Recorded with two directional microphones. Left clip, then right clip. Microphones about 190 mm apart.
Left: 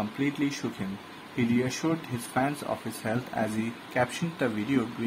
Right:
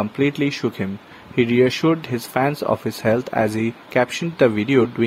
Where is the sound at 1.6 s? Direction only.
45° right (ahead or behind).